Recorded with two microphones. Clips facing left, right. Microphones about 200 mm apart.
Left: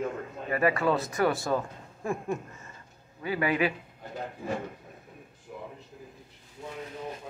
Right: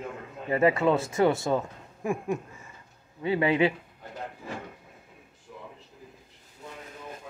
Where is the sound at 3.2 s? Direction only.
25° right (ahead or behind).